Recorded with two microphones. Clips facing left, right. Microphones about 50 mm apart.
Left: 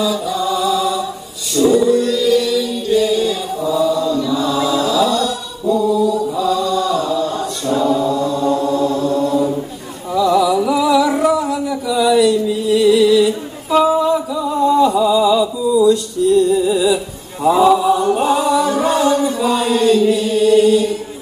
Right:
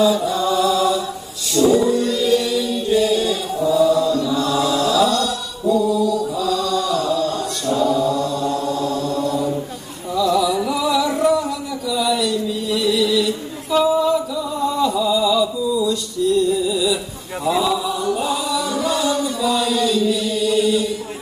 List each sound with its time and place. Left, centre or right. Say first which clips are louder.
0.0 s mantra: right 1 dB; centre
1.7 s chant: left 5 dB; centre
4.4 s mantra: left 2 dB; centre
6.1 s chant: left 3 dB; left
10.2 s music: left 4 dB; centre
11.1 s a sound: left 2 dB; centre
12.7 s a sound: left 7 dB; left
16.6 s chant: left 5 dB; left